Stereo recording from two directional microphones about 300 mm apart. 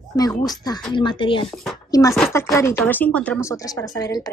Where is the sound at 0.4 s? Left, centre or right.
Centre.